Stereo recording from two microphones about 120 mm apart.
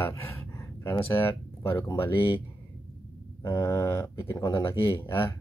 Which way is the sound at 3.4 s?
25° left (ahead or behind).